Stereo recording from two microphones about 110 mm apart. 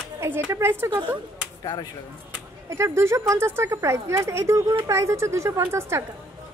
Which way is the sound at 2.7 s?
25° right (ahead or behind).